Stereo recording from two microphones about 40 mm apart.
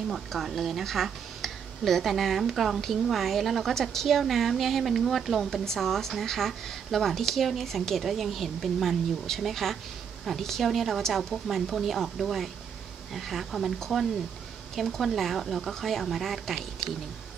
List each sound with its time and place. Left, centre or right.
0.1 s a woman's voice: centre
14.8 s a woman's voice: centre